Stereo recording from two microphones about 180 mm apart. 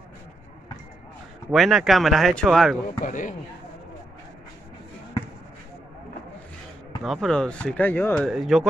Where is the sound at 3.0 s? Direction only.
45° left (ahead or behind).